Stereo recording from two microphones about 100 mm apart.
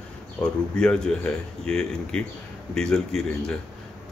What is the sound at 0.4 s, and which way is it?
Speech, 10° left (ahead or behind).